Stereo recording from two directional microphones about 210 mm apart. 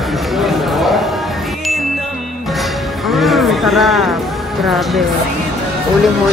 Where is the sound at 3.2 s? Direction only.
Centre (ahead or behind).